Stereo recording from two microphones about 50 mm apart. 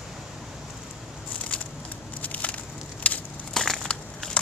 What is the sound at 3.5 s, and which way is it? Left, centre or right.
Crushing, centre.